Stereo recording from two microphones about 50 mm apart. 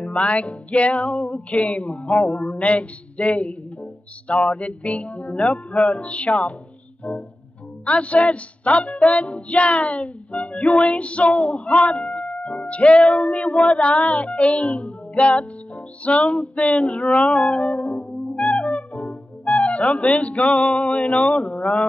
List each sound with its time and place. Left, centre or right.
0.0 s music: left